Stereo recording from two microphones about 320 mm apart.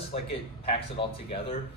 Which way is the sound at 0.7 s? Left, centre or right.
Centre.